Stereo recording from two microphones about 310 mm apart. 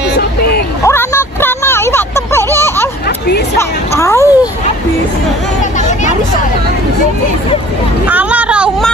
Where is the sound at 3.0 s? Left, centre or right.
Left.